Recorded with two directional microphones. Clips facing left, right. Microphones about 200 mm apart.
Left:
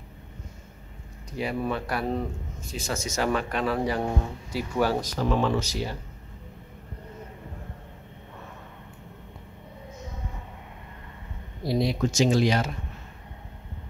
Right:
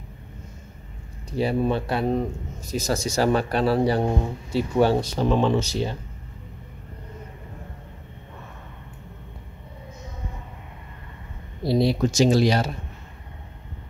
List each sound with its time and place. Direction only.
1.3 s speech: 30° right (ahead or behind)
2.6 s speech: 40° right (ahead or behind)
11.6 s speech: 30° right (ahead or behind)